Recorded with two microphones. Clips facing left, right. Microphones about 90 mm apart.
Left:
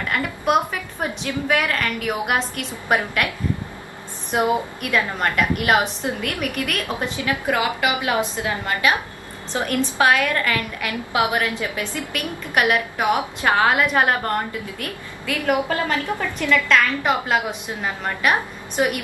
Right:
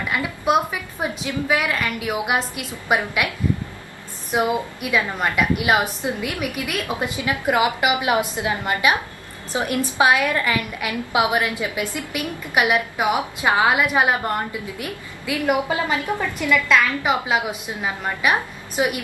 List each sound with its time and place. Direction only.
0.1 s a woman's voice: 5° right (ahead or behind)
4.4 s a woman's voice: 10° right (ahead or behind)